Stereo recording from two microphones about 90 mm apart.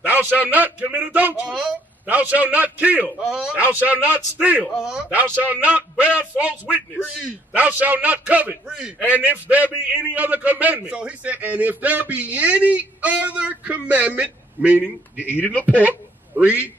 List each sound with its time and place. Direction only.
0.0 s a man's voice: 20° right (ahead or behind)
1.5 s a man's voice: 5° right (ahead or behind)
2.0 s a man's voice: 15° right (ahead or behind)
15.5 s speech: 15° left (ahead or behind)